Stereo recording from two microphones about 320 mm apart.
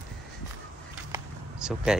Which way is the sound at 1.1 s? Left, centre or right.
Centre.